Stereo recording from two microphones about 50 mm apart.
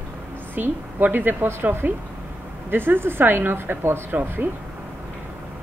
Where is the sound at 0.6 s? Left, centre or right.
Right.